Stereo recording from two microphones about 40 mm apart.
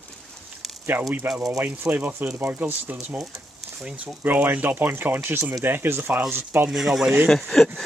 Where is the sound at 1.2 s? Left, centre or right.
Right.